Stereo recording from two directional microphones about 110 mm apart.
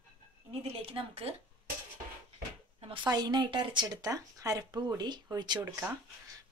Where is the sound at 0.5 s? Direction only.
60° right (ahead or behind).